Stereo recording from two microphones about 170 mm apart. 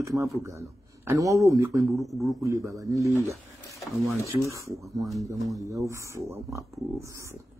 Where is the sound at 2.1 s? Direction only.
Centre (ahead or behind).